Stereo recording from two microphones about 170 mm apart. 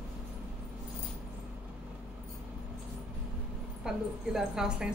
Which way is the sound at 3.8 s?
5° right (ahead or behind).